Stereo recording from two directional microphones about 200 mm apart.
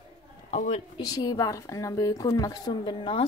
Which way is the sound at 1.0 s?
20° left (ahead or behind).